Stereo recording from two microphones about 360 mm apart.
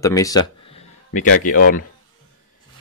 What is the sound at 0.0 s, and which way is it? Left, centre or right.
Speech, centre.